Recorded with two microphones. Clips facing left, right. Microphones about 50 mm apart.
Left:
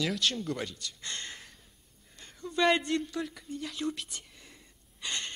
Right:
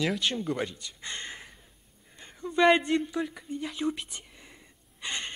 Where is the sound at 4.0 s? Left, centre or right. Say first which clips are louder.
Right 2 dB; centre.